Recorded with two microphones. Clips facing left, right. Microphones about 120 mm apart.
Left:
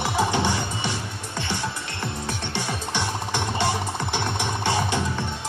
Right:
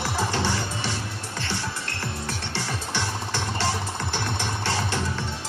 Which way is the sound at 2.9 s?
20° left (ahead or behind).